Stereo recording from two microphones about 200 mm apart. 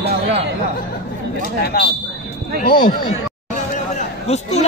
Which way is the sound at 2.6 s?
50° left (ahead or behind).